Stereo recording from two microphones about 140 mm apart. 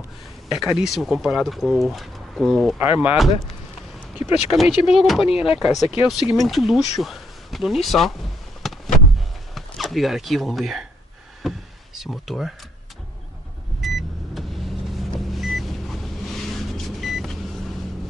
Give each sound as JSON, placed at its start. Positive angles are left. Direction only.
{"t": 0.6, "sound": "speech", "side_deg": 0}
{"t": 2.8, "sound": "speech", "side_deg": -10}
{"t": 8.6, "sound": "vehicle", "side_deg": 0}
{"t": 9.5, "sound": "speech", "side_deg": 0}
{"t": 11.4, "sound": "power windows", "side_deg": 0}
{"t": 13.7, "sound": "vehicle", "side_deg": 0}